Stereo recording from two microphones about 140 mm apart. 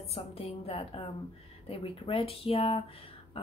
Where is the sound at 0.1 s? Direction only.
45° left (ahead or behind).